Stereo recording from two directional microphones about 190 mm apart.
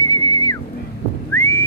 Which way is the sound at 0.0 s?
25° left (ahead or behind).